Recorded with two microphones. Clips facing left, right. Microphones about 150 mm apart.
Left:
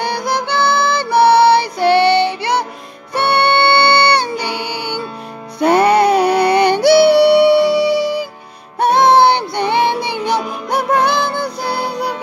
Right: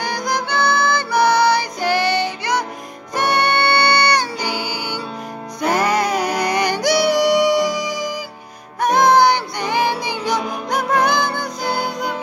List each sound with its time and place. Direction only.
0.0 s music: 30° left (ahead or behind)